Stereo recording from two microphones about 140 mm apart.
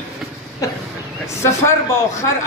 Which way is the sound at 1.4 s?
20° left (ahead or behind).